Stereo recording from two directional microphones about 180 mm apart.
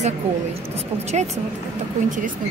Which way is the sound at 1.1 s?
35° right (ahead or behind).